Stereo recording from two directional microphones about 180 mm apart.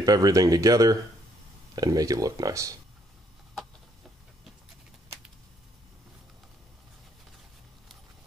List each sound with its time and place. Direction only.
0.0 s speech: 20° right (ahead or behind)